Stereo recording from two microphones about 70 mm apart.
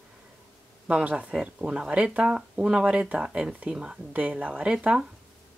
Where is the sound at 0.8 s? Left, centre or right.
Centre.